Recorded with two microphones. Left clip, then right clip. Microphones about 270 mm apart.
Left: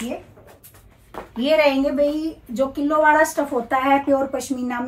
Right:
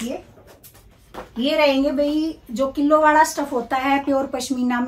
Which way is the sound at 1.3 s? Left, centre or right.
Centre.